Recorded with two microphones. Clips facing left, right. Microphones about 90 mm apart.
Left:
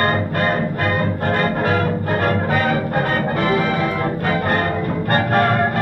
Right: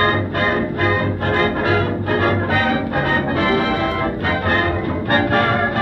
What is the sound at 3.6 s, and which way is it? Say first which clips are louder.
Music: right 1 dB; 65° right (ahead or behind).